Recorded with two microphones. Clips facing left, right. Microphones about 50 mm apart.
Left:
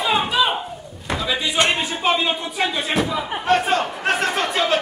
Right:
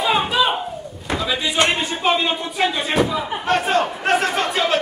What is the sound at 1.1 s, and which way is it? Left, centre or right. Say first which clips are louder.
Speech: even; centre.